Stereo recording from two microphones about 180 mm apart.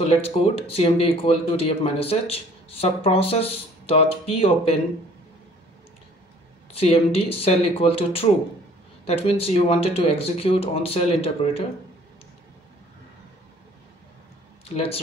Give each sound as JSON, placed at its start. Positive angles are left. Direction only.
{"t": 0.0, "sound": "speech", "side_deg": 30}
{"t": 6.7, "sound": "speech", "side_deg": 35}
{"t": 14.7, "sound": "speech", "side_deg": 35}